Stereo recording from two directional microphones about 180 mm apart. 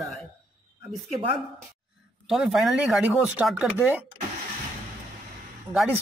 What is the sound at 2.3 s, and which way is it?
Speech, centre (ahead or behind).